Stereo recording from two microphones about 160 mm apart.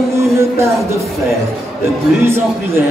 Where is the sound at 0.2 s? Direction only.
15° right (ahead or behind).